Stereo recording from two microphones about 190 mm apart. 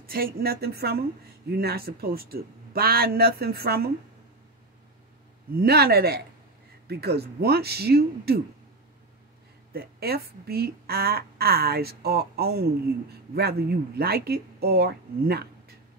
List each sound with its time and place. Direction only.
0.0 s speech: 50° right (ahead or behind)
5.6 s speech: 55° right (ahead or behind)
9.7 s speech: 55° right (ahead or behind)